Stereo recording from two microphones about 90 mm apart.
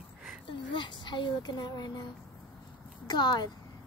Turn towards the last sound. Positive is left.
turn(degrees=55)  # may be behind; listen again after turning